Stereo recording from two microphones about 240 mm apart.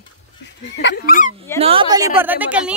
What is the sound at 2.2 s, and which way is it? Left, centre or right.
Speech, centre.